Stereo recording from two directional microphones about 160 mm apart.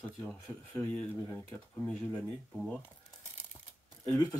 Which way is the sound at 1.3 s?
10° left (ahead or behind).